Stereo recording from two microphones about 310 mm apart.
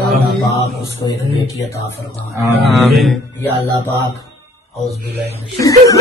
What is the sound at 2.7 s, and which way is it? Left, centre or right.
Snicker, centre.